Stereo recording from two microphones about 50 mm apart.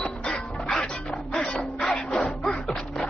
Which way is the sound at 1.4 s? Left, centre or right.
Left.